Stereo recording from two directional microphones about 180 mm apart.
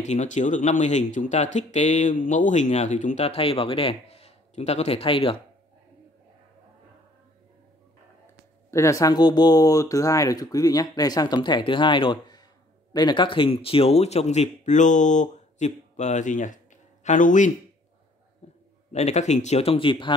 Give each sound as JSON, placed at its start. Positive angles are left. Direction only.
{"t": 0.0, "sound": "speech", "side_deg": 40}
{"t": 8.6, "sound": "speech", "side_deg": 15}
{"t": 18.4, "sound": "a sound", "side_deg": 35}
{"t": 18.9, "sound": "speech", "side_deg": 40}